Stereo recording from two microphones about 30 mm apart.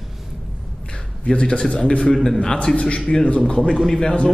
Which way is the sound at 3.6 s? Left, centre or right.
Centre.